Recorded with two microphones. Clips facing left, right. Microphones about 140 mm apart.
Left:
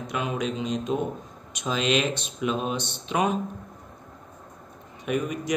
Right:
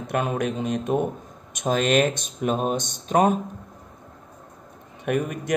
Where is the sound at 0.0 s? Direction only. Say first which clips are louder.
Right 4 dB; 50° right (ahead or behind).